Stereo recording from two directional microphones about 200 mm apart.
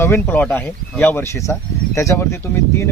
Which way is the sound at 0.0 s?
10° left (ahead or behind).